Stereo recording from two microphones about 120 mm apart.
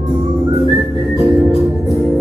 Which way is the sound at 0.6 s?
30° right (ahead or behind).